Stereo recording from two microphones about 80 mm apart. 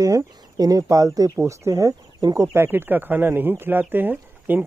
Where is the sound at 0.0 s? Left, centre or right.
Right.